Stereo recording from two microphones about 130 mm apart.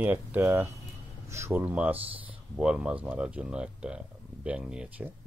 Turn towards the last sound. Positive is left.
turn(degrees=-10)  # may be behind; listen again after turning